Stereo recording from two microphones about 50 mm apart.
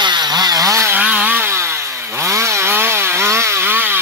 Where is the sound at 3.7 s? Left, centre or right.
Right.